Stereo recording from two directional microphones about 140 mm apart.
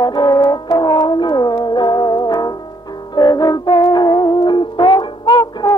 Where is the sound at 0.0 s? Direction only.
30° left (ahead or behind).